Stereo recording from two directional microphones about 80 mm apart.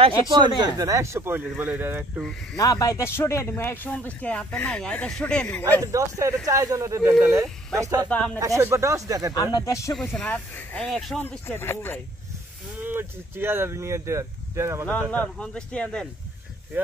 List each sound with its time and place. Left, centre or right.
0.3 s speech: right
0.7 s speech: right
2.5 s speech: left
3.0 s speech: left; by 5.8 s centre
5.8 s speech: right
9.6 s speech: left
9.9 s speech: centre
10.2 s speech: centre
10.9 s speech: centre
11.1 s speech: left
12.8 s speech: right
14.9 s speech: centre
16.7 s speech: right